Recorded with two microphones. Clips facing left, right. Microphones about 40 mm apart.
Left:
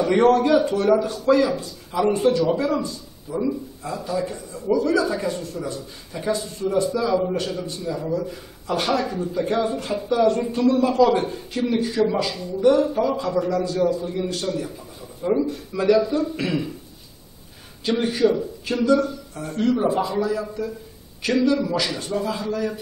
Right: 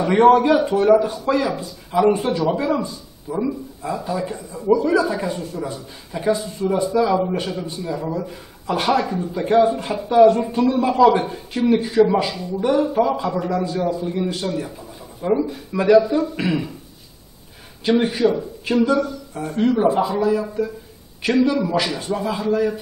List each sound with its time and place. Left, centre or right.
0.0 s speech: centre
17.8 s speech: centre